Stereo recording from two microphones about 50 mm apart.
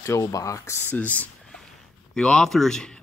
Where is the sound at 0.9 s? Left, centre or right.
Left.